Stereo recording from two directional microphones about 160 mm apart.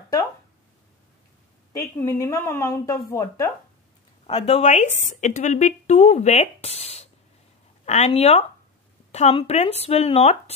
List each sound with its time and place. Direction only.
1.7 s a woman's voice: 15° left (ahead or behind)
4.3 s speech: 40° left (ahead or behind)